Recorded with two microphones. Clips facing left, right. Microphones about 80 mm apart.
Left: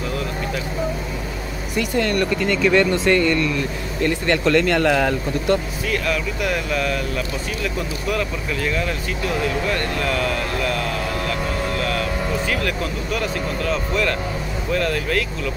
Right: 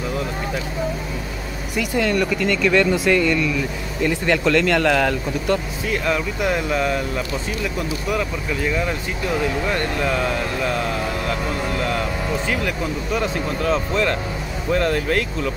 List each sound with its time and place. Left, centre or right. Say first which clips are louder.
1.8 s speech: even; centre
2.3 s speech: left 3 dB; centre
5.9 s speech: right 1 dB; right
8.1 s speech: left 1 dB; centre; by 15.2 s right